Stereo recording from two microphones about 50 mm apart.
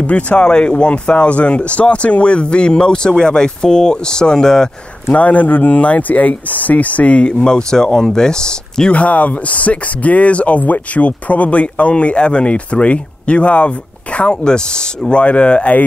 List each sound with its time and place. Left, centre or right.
0.0 s speech: left
5.1 s speech: left
8.9 s speech: left